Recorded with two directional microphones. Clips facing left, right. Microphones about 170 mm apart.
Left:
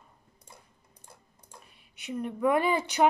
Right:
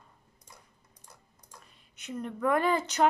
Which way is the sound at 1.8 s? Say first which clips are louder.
Left 3 dB; 10° left (ahead or behind).